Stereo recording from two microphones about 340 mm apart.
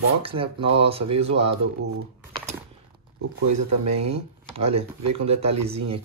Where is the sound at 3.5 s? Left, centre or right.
Right.